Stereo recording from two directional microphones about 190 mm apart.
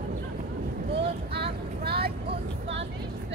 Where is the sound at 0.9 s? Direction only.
60° right (ahead or behind).